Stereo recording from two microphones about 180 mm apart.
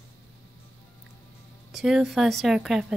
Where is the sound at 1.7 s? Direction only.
5° right (ahead or behind).